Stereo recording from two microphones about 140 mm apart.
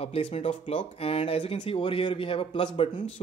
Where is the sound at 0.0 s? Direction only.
45° left (ahead or behind).